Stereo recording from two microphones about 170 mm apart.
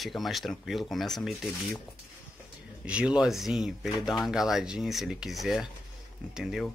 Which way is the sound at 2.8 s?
5° right (ahead or behind).